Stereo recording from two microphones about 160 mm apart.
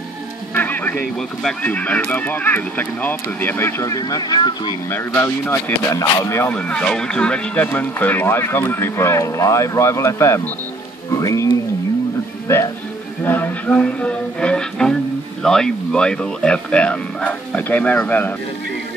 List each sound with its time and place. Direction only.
0.6 s speech: 10° left (ahead or behind); by 4.7 s 30° left (ahead or behind)
4.9 s speech: 10° left (ahead or behind)
13.2 s music: 10° left (ahead or behind)
15.4 s speech: 5° left (ahead or behind)